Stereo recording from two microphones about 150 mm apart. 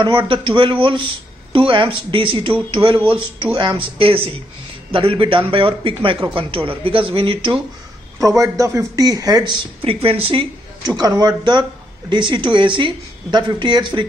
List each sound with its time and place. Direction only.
0.0 s speech: 30° right (ahead or behind)
8.2 s speech: 20° right (ahead or behind)
10.9 s speech: 25° right (ahead or behind)